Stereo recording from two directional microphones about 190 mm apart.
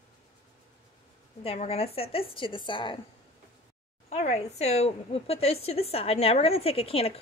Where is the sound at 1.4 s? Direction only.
30° left (ahead or behind).